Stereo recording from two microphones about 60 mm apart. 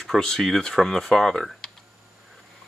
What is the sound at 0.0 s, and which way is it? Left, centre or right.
Speech, centre.